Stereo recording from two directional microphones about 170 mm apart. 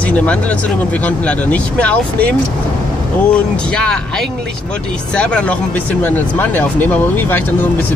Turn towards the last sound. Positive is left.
turn(degrees=10)  # may be behind; listen again after turning